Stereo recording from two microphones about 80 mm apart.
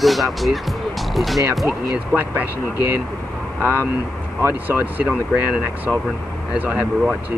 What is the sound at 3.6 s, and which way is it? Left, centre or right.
Speech, right.